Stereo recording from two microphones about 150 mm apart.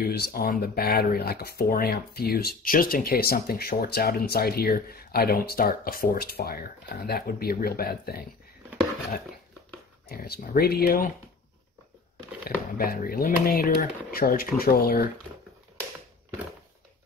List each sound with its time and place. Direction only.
0.0 s speech: 90° left
10.0 s speech: 90° left
12.4 s speech: 75° left (ahead or behind)